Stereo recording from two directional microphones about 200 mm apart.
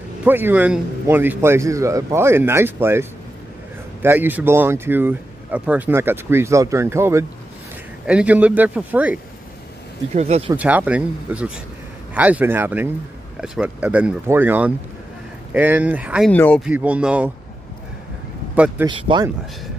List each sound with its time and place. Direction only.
0.2 s speech: 10° right (ahead or behind)
10.1 s speech: 30° right (ahead or behind)
10.5 s speech: 10° right (ahead or behind)
16.3 s speech: 5° left (ahead or behind)
16.6 s speech: 5° right (ahead or behind)
18.9 s speech: 25° right (ahead or behind)